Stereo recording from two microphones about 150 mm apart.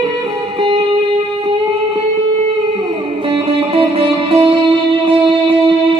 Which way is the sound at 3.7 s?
40° right (ahead or behind).